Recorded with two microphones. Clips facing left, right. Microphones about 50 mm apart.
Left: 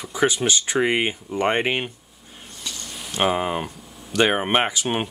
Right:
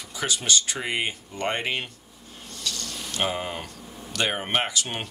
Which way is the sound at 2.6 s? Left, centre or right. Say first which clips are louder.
Right 1 dB; centre.